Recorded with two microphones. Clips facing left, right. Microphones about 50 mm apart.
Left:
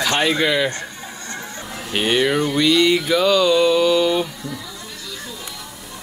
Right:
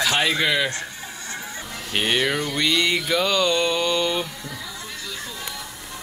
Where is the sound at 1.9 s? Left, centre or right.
Centre.